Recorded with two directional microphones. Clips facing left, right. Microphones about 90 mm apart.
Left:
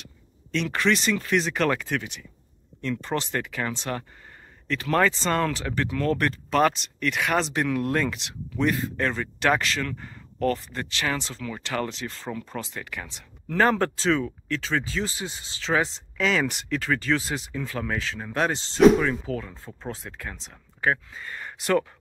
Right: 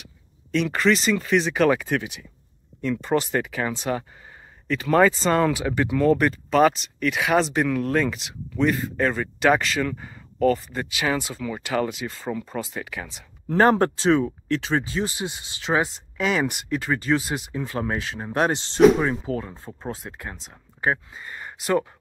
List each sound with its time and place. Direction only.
0.0 s speech: 5° right (ahead or behind)
13.5 s speech: 25° right (ahead or behind)
17.5 s speech: 25° right (ahead or behind)
19.5 s speech: 10° right (ahead or behind)